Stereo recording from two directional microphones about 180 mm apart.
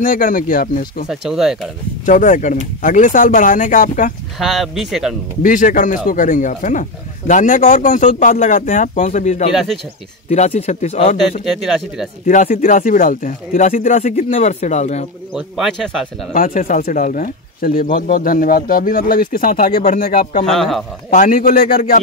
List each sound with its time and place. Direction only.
0.0 s speech: 50° left (ahead or behind)
1.0 s speech: centre (ahead or behind)
2.0 s speech: 45° left (ahead or behind)
4.4 s speech: centre (ahead or behind)
5.4 s speech: 50° left (ahead or behind)
9.5 s speech: centre (ahead or behind)
10.3 s speech: 35° left (ahead or behind)
11.4 s speech: centre (ahead or behind)
12.3 s speech: 45° left (ahead or behind)
15.3 s speech: centre (ahead or behind)
16.3 s speech: 50° left (ahead or behind)
20.4 s speech: centre (ahead or behind)
21.1 s speech: 50° left (ahead or behind)